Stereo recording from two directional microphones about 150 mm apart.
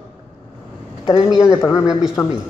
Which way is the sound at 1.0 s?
25° left (ahead or behind).